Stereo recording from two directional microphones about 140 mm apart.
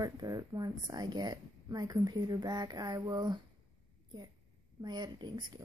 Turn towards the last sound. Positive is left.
turn(degrees=-30)  # may be behind; listen again after turning